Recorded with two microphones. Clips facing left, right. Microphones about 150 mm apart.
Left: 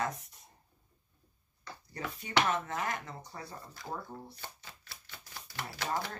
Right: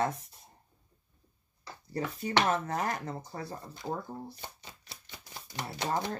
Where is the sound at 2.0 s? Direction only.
35° right (ahead or behind).